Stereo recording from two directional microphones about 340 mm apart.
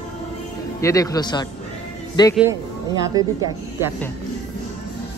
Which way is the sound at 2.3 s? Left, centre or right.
Centre.